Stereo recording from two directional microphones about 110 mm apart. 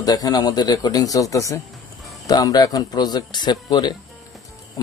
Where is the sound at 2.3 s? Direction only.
35° left (ahead or behind).